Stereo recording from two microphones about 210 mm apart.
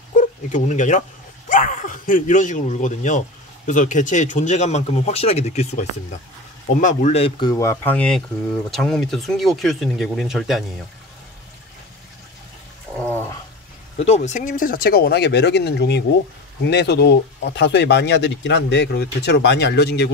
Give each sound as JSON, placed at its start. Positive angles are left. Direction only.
{"t": 0.2, "sound": "speech", "side_deg": 35}
{"t": 13.0, "sound": "a sound", "side_deg": 10}
{"t": 13.9, "sound": "speech", "side_deg": 30}